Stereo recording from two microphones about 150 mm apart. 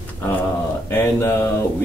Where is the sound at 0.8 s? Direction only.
15° left (ahead or behind).